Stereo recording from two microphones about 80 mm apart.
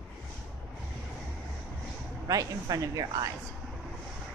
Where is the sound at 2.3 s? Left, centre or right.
Right.